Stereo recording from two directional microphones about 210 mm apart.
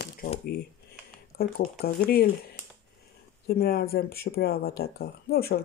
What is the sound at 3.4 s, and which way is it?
Speech, 50° left (ahead or behind).